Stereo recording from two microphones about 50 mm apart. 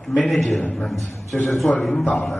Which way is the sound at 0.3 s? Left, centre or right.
Centre.